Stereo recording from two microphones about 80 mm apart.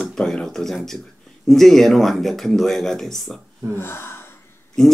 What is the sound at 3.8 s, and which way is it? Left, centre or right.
Gasp, left.